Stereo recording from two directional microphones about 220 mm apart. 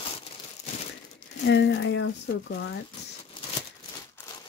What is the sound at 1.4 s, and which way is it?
Speech, 55° left (ahead or behind).